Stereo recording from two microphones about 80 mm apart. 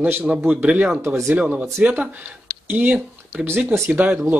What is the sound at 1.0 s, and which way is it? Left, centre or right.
Speech, right.